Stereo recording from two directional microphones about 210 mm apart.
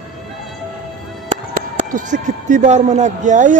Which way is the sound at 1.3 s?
40° right (ahead or behind).